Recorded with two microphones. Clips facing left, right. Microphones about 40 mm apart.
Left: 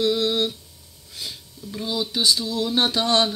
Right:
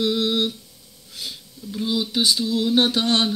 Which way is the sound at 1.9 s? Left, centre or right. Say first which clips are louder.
Right 1 dB; right.